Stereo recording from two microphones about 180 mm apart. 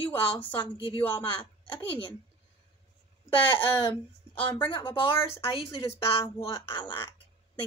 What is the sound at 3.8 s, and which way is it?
Speech, 30° left (ahead or behind).